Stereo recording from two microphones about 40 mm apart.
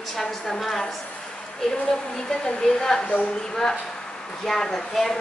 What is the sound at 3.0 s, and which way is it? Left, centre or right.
Speech, left.